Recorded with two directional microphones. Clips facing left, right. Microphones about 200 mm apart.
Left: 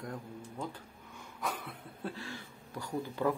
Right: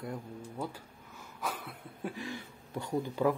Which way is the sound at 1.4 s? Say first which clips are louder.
Even; centre (ahead or behind).